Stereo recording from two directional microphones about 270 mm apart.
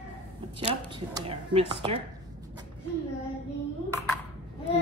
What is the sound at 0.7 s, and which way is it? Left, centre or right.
Speech, centre.